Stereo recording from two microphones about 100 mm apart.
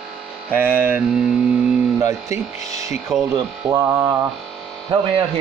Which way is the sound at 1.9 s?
30° right (ahead or behind).